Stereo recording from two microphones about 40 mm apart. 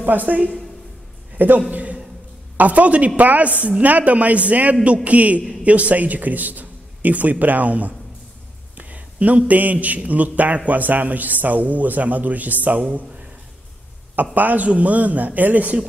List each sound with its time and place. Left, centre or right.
0.0 s speech: right
1.7 s a sound: right
2.5 s a man's voice: right
14.3 s a man's voice: right